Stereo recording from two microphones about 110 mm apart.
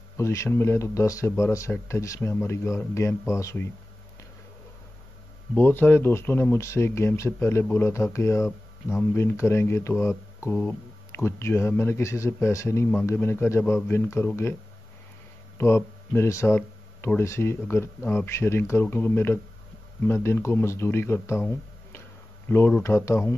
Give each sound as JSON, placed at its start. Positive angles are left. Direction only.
{"t": 0.2, "sound": "a man's voice", "side_deg": 25}
{"t": 5.5, "sound": "a man's voice", "side_deg": 15}